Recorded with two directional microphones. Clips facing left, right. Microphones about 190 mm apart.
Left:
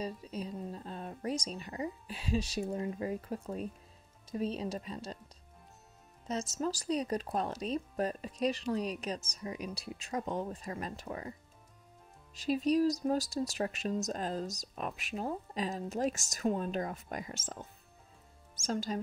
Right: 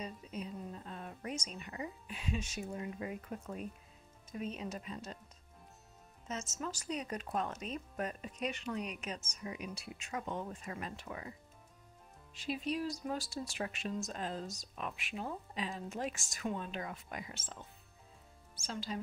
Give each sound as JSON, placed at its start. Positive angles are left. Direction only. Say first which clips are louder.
{"t": 0.0, "sound": "speech", "louder": "left 4 dB", "side_deg": 35}
{"t": 6.2, "sound": "speech", "louder": "left 7 dB", "side_deg": 35}
{"t": 12.4, "sound": "speech", "louder": "left 9 dB", "side_deg": 40}